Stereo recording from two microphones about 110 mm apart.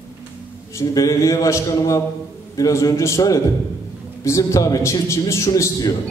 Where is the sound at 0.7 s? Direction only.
30° left (ahead or behind).